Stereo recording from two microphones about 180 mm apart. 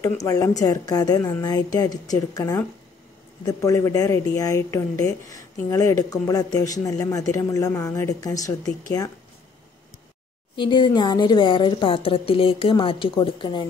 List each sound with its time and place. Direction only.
0.0 s speech: 20° left (ahead or behind)
10.5 s speech: 25° left (ahead or behind)